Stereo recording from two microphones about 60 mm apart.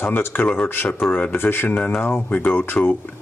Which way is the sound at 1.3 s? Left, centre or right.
Left.